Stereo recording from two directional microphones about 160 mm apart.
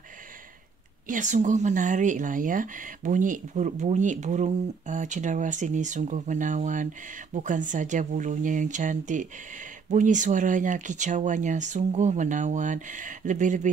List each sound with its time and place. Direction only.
1.0 s speech: 50° right (ahead or behind)